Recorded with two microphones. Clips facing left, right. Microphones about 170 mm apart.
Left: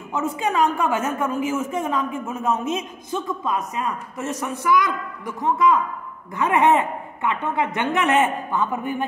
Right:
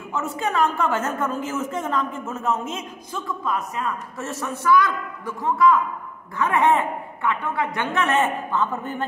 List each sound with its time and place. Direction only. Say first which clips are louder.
0.1 s a woman's voice: left 2 dB; 15° left (ahead or behind)